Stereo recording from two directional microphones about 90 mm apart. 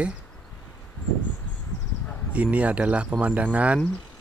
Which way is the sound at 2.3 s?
15° right (ahead or behind).